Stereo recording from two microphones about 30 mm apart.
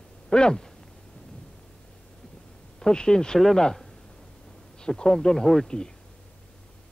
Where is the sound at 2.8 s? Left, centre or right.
Left.